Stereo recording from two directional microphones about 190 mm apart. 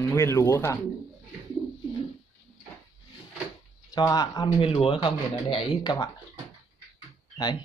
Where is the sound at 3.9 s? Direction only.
20° left (ahead or behind).